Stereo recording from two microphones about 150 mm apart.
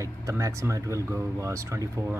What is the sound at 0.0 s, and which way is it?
Speech, 20° right (ahead or behind).